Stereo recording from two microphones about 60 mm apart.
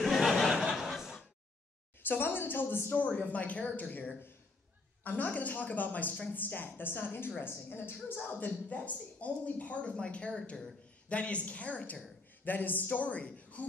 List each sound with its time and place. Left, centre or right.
0.0 s a sound: centre
2.0 s a man's voice: left
3.0 s a woman's voice: left